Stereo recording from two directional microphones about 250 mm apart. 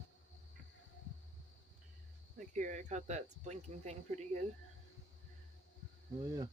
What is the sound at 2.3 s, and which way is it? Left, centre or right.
Speech, right.